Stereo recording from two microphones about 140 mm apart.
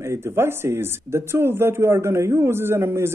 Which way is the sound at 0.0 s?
20° right (ahead or behind).